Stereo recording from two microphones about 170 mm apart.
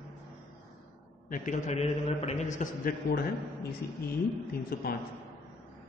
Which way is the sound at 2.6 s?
55° left (ahead or behind).